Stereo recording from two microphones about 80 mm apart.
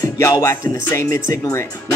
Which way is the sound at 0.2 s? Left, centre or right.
Left.